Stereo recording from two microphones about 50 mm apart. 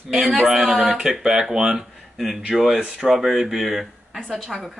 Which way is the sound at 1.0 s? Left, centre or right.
Centre.